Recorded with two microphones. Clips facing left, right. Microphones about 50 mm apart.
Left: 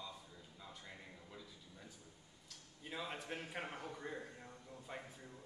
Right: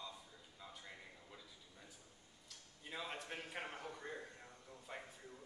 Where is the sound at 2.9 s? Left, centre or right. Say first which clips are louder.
Left 2 dB; centre.